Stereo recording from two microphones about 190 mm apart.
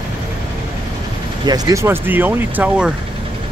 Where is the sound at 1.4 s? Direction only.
20° right (ahead or behind).